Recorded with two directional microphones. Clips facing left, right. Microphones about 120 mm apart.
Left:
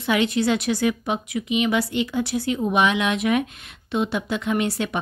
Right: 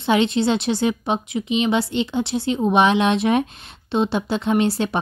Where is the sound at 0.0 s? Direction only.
25° right (ahead or behind).